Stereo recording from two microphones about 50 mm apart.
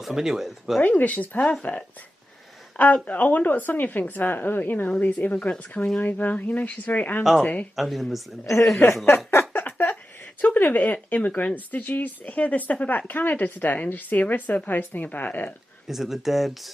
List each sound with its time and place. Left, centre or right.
0.0 s speech: centre
0.8 s speech: left
4.8 s a woman's voice: left
7.7 s speech: centre
9.0 s speech: left
9.5 s a sound: left
10.5 s speech: left
15.9 s speech: centre